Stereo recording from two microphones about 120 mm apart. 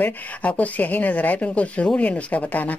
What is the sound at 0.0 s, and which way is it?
Speech, 10° left (ahead or behind).